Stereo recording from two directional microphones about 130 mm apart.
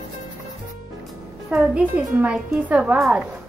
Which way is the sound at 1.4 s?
10° right (ahead or behind).